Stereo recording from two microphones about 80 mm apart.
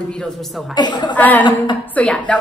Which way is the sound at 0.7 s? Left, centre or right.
Left.